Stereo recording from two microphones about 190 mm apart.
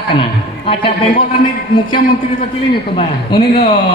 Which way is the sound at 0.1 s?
25° left (ahead or behind).